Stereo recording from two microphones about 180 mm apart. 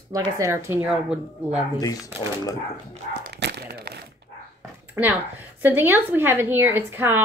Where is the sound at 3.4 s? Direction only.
65° right (ahead or behind).